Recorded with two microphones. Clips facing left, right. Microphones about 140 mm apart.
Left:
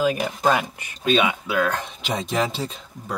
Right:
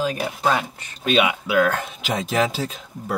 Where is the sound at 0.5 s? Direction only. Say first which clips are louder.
Left 1 dB; 10° left (ahead or behind).